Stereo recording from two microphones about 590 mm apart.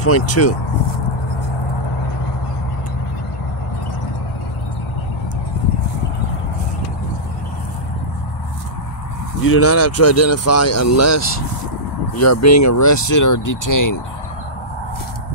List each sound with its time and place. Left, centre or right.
0.0 s speech: left
9.4 s speech: left